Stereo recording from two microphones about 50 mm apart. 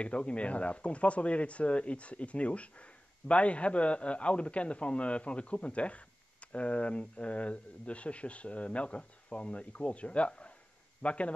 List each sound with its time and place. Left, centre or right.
0.0 s speech: left